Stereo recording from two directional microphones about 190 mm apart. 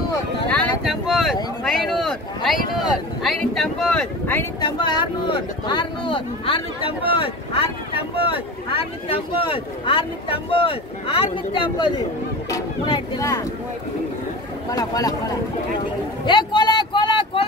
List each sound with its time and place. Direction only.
0.5 s speech: 5° left (ahead or behind)
4.6 s speech: 25° left (ahead or behind)
14.7 s speech: 20° left (ahead or behind)
16.3 s vehicle: 25° left (ahead or behind)